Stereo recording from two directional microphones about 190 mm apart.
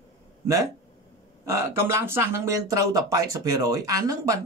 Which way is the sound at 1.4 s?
15° right (ahead or behind).